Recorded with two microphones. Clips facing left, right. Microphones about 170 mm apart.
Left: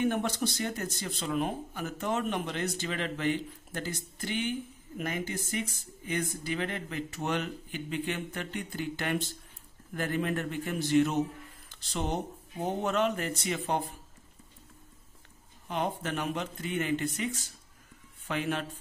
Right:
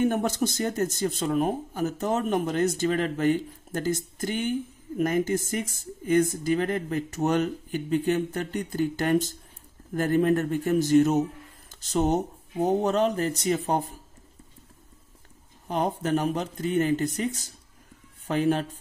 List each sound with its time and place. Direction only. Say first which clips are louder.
0.0 s speech: right 5 dB; 45° right (ahead or behind)
15.7 s speech: right 7 dB; 40° right (ahead or behind)